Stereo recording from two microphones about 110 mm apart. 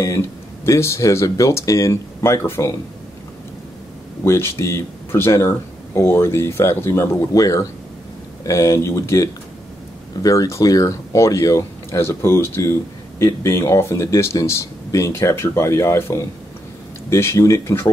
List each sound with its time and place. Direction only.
0.0 s speech: 25° left (ahead or behind)
4.2 s speech: 25° left (ahead or behind)